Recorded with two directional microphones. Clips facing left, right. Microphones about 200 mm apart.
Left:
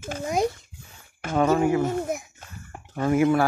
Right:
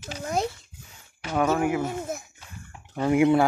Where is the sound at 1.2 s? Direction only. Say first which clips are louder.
Left 2 dB; 50° left (ahead or behind).